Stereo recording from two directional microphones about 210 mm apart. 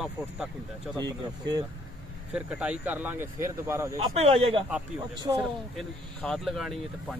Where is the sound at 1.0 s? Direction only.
20° right (ahead or behind).